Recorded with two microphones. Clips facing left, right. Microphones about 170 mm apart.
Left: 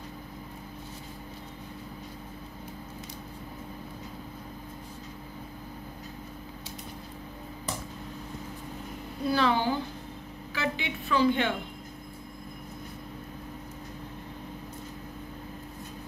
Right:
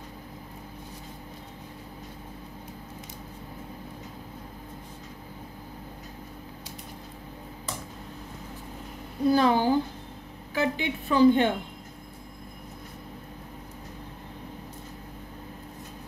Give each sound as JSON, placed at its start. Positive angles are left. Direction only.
{"t": 9.3, "sound": "a woman's voice", "side_deg": -45}